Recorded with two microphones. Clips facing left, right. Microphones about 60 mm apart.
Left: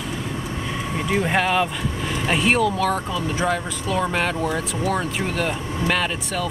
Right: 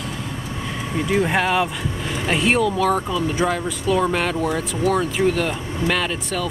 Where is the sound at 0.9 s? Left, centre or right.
Centre.